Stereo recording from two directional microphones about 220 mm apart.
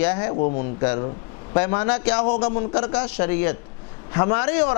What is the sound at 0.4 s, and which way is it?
Speech, 40° left (ahead or behind).